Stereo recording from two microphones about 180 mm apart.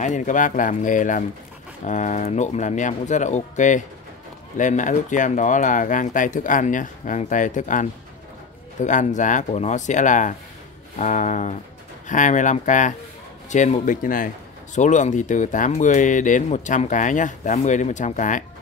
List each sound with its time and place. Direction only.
0.0 s speech: 45° left (ahead or behind)